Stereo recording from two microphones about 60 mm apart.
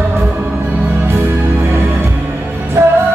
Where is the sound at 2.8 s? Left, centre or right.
Right.